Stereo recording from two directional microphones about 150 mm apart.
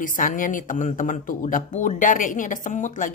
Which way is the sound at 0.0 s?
60° left (ahead or behind).